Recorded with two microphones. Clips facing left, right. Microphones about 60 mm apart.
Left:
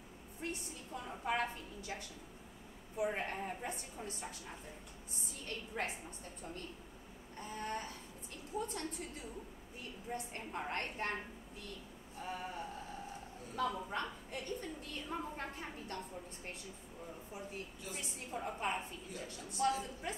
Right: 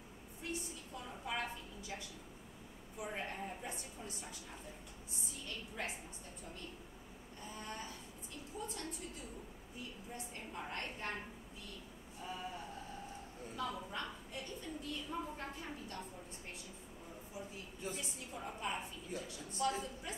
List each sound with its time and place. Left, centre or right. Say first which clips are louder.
0.4 s a sound: left 1 dB; left
1.2 s a woman's voice: left 5 dB; left
5.8 s a woman's voice: left 4 dB; left
7.4 s a woman's voice: left 5 dB; left
12.2 s a woman's voice: left 2 dB; left
13.7 s a woman's voice: left 4 dB; left
17.9 s a woman's voice: left 3 dB; left